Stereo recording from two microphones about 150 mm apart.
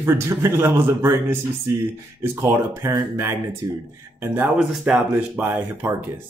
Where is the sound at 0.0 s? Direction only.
20° right (ahead or behind).